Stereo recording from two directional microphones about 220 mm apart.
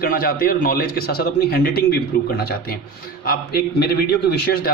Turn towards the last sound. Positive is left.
turn(degrees=45)  # may be behind; listen again after turning